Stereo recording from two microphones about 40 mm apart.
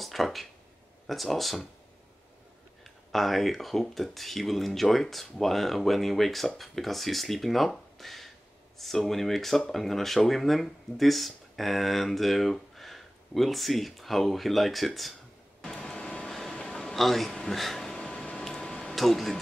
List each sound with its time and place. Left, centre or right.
0.0 s speech: centre
2.8 s speech: centre
15.7 s vehicle: centre
16.5 s a sound: centre
18.9 s speech: centre